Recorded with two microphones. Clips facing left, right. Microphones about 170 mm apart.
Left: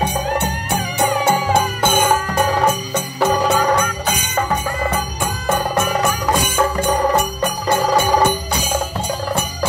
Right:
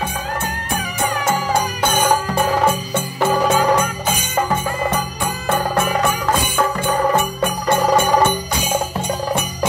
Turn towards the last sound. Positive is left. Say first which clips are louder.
# right 1 dB
turn(degrees=35)  # may be behind; listen again after turning